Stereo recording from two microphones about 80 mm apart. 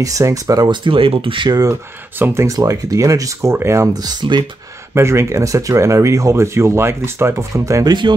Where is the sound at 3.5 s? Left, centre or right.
Right.